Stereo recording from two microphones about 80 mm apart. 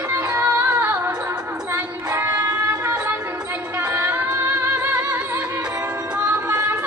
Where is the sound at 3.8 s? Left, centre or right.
Right.